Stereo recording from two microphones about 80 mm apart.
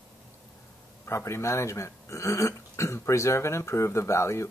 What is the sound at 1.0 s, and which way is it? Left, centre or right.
Speech, left.